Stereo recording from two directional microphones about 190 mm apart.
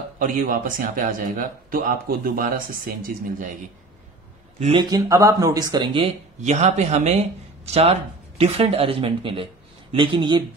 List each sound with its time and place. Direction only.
0.2 s speech: 45° right (ahead or behind)
4.6 s speech: 30° right (ahead or behind)